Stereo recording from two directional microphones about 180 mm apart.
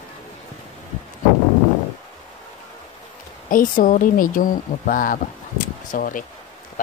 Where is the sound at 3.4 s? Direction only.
50° left (ahead or behind).